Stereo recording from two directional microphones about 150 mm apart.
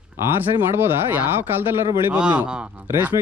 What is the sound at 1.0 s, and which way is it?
Speech, 15° right (ahead or behind).